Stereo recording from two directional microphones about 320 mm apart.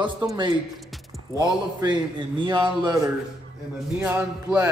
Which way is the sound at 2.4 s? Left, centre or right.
Centre.